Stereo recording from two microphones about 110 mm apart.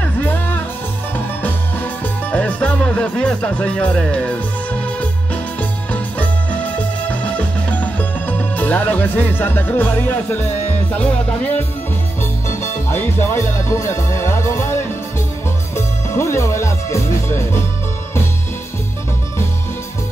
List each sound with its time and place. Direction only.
0.0 s music: 15° left (ahead or behind)
2.3 s music: 10° left (ahead or behind)
15.7 s speech: 25° left (ahead or behind)